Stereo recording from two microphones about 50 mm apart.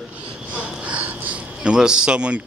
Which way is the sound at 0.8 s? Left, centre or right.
Right.